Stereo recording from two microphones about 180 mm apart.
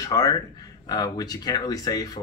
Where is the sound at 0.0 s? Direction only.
20° left (ahead or behind).